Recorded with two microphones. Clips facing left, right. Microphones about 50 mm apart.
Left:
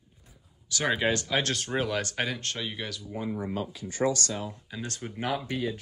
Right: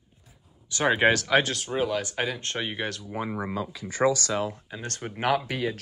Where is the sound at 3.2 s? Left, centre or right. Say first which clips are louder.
Right 1 dB; right.